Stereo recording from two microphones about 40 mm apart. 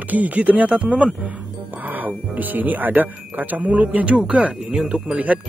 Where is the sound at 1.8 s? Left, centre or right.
Right.